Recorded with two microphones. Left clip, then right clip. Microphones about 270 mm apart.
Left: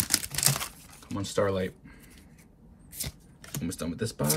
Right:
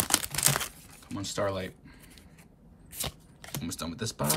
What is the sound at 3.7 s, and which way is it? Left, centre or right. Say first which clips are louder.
Speech: left 2 dB; centre.